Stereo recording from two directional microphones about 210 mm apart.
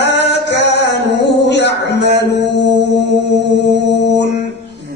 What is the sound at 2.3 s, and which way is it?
Mantra, 55° left (ahead or behind).